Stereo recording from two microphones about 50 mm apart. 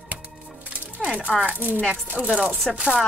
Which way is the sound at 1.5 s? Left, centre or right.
Right.